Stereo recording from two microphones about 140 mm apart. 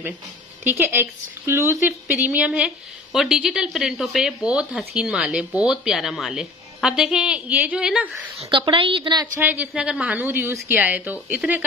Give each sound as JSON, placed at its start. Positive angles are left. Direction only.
{"t": 0.7, "sound": "a woman's voice", "side_deg": -15}
{"t": 8.4, "sound": "a woman's voice", "side_deg": -35}
{"t": 9.4, "sound": "a woman's voice", "side_deg": -10}